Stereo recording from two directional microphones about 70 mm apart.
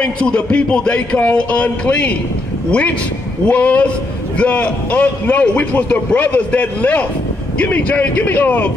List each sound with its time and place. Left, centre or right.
0.0 s speech: centre
3.4 s a man's voice: centre